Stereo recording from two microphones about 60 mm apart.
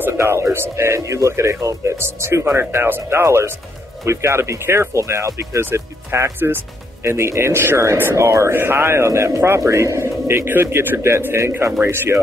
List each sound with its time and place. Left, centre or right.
0.2 s speech: right
8.5 s speech: right